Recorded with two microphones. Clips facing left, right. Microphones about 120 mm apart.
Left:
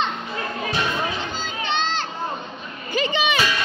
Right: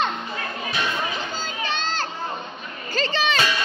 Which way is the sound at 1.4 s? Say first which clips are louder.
Left 3 dB; 40° right (ahead or behind).